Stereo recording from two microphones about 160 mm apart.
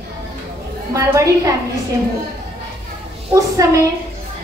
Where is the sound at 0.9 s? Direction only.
20° right (ahead or behind).